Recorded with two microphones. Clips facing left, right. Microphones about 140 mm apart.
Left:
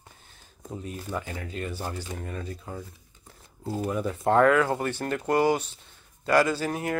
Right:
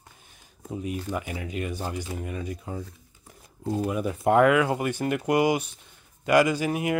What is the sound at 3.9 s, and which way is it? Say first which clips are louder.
Speech: right 1 dB; 15° right (ahead or behind).